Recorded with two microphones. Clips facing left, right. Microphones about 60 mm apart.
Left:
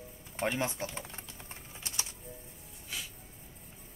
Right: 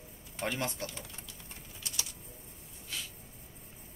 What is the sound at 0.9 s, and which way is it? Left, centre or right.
Typing, left.